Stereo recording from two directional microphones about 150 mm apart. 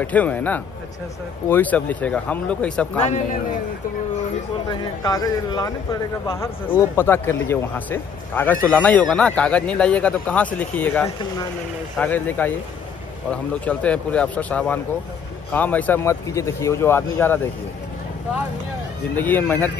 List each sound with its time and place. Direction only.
0.0 s a man's voice: 10° left (ahead or behind)
3.0 s a man's voice: 50° left (ahead or behind)
4.6 s a man's voice: 25° left (ahead or behind)
19.1 s a man's voice: 10° left (ahead or behind)